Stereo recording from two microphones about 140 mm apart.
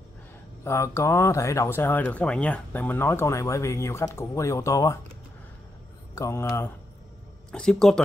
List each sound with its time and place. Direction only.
0.7 s speech: 20° left (ahead or behind)
6.1 s speech: 20° left (ahead or behind)
7.5 s speech: 5° left (ahead or behind)